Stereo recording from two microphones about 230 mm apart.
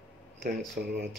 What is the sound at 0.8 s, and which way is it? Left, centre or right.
Speech, right.